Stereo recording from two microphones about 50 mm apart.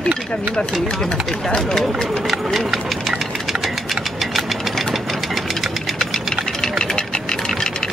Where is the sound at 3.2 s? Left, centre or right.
Centre.